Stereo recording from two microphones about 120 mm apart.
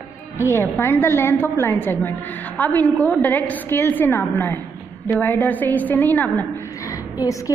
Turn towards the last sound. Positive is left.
turn(degrees=30)  # may be behind; listen again after turning